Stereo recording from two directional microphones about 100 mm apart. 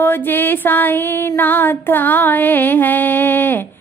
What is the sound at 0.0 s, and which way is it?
Music, 20° left (ahead or behind).